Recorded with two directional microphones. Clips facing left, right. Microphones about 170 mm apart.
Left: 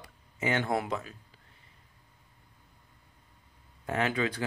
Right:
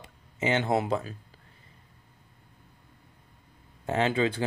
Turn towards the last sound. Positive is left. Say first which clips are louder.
# right 4 dB
turn(degrees=-25)  # may be behind; listen again after turning